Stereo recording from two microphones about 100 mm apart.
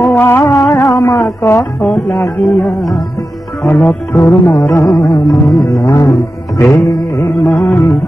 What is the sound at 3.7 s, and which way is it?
Mantra, 5° left (ahead or behind).